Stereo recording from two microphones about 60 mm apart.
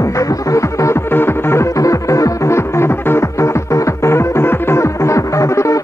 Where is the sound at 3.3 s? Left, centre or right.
Left.